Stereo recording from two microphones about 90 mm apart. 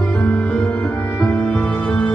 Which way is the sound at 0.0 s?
20° left (ahead or behind).